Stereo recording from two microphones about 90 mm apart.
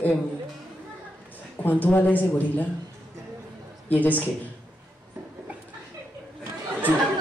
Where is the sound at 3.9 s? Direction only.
20° left (ahead or behind).